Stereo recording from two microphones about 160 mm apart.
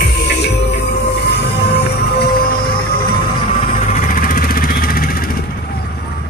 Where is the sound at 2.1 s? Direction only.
75° left (ahead or behind).